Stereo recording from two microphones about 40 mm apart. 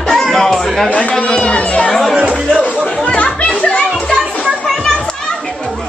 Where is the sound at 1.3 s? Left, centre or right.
Left.